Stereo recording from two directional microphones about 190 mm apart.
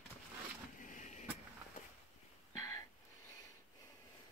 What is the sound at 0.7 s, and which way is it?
Vehicle, 40° left (ahead or behind).